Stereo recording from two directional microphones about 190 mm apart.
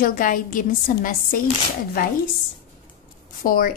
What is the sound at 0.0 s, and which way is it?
Speech, 45° left (ahead or behind).